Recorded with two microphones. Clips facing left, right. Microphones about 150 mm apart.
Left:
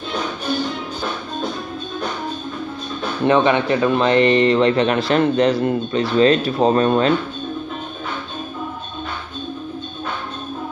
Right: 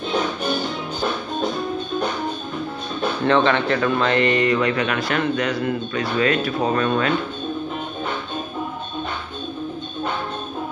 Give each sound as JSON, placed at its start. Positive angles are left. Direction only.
{"t": 3.3, "sound": "speech", "side_deg": 15}